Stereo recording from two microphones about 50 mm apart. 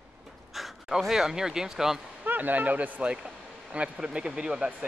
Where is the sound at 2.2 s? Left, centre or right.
Right.